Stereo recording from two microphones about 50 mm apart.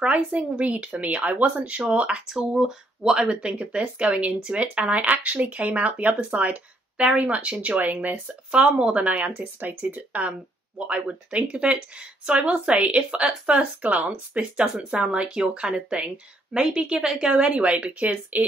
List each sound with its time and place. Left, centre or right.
0.0 s speech: right
2.0 s speech: centre
2.2 s speech: centre
3.0 s speech: centre
4.3 s speech: centre
4.6 s speech: right
13.7 s speech: right